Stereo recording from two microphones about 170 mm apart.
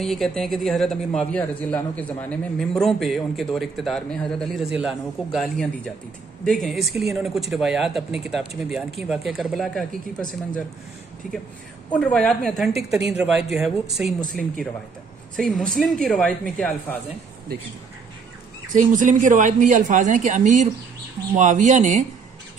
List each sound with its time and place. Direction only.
0.0 s a man's voice: centre (ahead or behind)
11.9 s a man's voice: 5° left (ahead or behind)
15.3 s a man's voice: centre (ahead or behind)
18.7 s speech: 50° right (ahead or behind)